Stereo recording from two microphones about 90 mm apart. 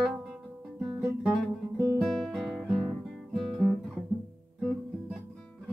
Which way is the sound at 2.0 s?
5° left (ahead or behind).